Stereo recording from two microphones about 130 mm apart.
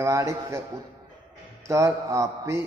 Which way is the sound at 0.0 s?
20° right (ahead or behind).